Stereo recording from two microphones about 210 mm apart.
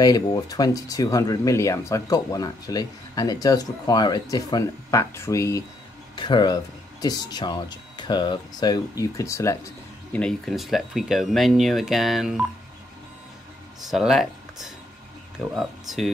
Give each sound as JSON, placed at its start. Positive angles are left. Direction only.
{"t": 0.0, "sound": "speech", "side_deg": 20}
{"t": 10.1, "sound": "speech", "side_deg": 5}
{"t": 13.8, "sound": "speech", "side_deg": 0}